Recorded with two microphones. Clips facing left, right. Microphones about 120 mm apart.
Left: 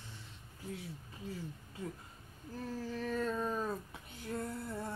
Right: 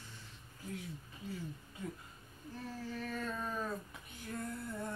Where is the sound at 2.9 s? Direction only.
35° left (ahead or behind).